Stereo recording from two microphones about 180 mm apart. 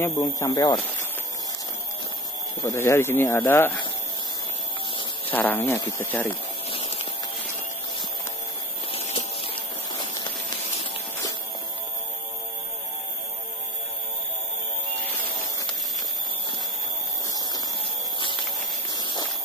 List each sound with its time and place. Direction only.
0.0 s speech: 15° left (ahead or behind)
2.6 s speech: 15° left (ahead or behind)
5.3 s speech: 10° left (ahead or behind)
6.7 s a sound: 30° left (ahead or behind)
8.9 s a sound: 30° left (ahead or behind)
18.9 s walk: 25° left (ahead or behind)